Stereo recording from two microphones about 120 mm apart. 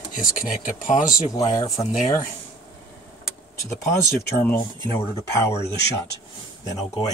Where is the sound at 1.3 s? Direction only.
30° left (ahead or behind).